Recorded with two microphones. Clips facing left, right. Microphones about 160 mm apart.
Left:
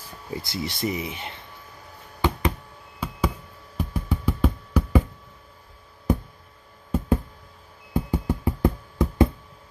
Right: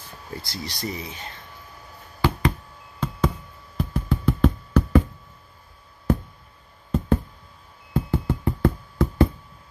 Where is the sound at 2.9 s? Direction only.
10° left (ahead or behind).